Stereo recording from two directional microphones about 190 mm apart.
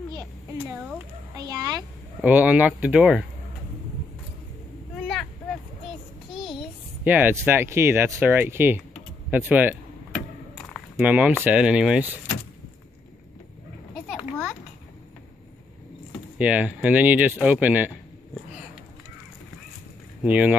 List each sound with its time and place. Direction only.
1.4 s a child's voice: 20° right (ahead or behind)
2.2 s speech: 10° right (ahead or behind)
4.9 s vehicle: 5° left (ahead or behind)
7.1 s speech: 10° right (ahead or behind)
10.1 s a sound: centre (ahead or behind)
16.3 s speech: 5° right (ahead or behind)
20.2 s speech: 10° right (ahead or behind)